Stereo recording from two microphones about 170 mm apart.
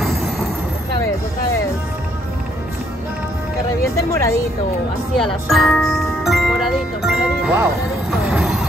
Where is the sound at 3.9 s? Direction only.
20° left (ahead or behind).